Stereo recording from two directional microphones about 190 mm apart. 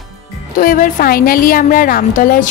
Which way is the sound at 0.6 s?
45° left (ahead or behind).